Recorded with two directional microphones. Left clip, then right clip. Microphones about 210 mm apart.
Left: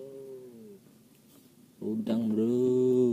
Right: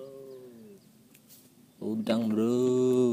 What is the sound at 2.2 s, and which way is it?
Mantra, 25° right (ahead or behind).